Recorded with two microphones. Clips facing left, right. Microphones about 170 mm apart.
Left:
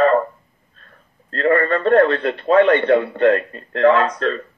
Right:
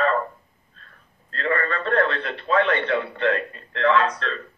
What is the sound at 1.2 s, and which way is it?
A man's voice, 40° left (ahead or behind).